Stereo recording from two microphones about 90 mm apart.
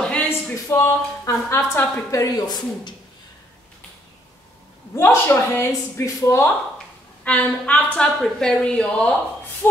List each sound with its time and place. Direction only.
0.3 s a woman's voice: 35° left (ahead or behind)
1.5 s a woman's voice: 30° left (ahead or behind); by 2.9 s 50° left (ahead or behind)
4.9 s speech: 30° left (ahead or behind)
7.2 s speech: 15° left (ahead or behind)